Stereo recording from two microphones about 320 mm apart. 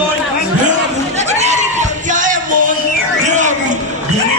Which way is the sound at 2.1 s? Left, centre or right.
Right.